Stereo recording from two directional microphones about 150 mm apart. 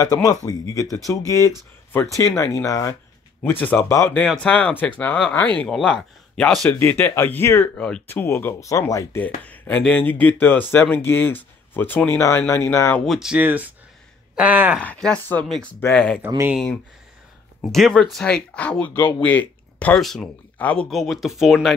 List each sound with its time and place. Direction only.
0.0 s speech: 25° left (ahead or behind)
4.2 s speech: 5° left (ahead or behind)
13.0 s speech: centre (ahead or behind)
14.8 s speech: 5° left (ahead or behind)
17.6 s speech: 5° left (ahead or behind)